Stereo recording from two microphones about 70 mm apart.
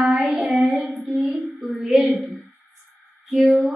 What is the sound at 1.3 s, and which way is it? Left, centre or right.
Child singing, right.